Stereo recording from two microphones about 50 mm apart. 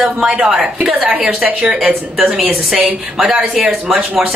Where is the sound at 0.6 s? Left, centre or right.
Right.